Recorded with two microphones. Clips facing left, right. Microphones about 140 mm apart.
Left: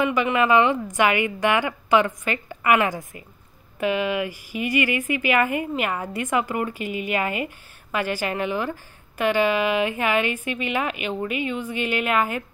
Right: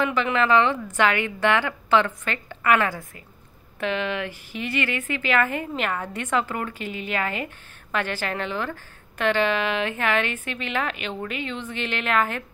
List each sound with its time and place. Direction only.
0.0 s a woman's voice: 10° left (ahead or behind)